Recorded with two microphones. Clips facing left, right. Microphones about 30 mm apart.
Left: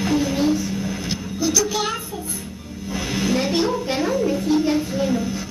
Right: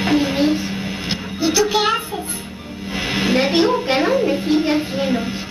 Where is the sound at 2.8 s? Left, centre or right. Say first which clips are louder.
Right 3 dB; right.